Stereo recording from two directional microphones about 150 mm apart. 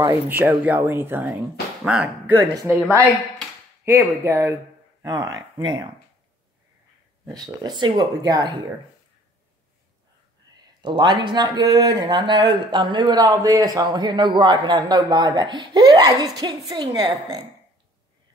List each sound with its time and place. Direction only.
0.0 s speech: 15° right (ahead or behind)
7.4 s speech: 30° right (ahead or behind)
10.5 s a sound: 25° right (ahead or behind)
10.8 s speech: 30° right (ahead or behind)